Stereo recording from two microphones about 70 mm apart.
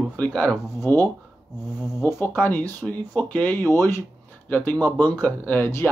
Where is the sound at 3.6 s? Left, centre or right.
Left.